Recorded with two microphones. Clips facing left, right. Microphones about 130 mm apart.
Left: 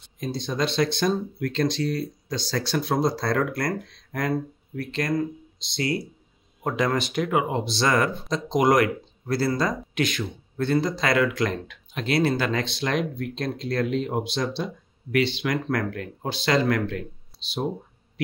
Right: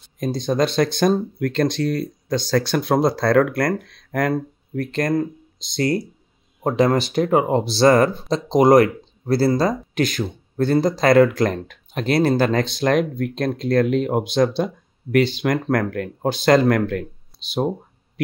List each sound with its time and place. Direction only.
0.2 s speech: 45° right (ahead or behind)
6.6 s speech: 35° right (ahead or behind); by 17.0 s 50° right (ahead or behind)